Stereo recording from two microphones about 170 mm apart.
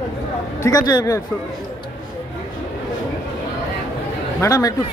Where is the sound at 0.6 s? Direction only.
20° left (ahead or behind).